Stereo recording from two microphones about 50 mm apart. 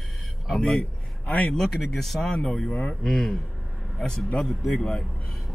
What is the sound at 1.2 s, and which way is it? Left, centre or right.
Speech, left.